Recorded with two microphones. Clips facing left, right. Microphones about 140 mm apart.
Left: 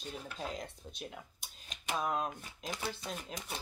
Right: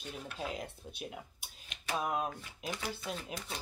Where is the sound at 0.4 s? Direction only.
5° right (ahead or behind).